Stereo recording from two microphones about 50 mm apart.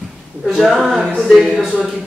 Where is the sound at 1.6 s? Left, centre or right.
Right.